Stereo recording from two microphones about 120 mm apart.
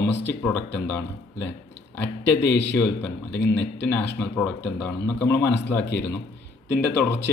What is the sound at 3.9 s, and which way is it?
A man's voice, 15° left (ahead or behind).